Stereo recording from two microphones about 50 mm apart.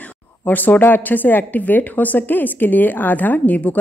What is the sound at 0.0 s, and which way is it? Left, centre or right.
A woman's voice, left.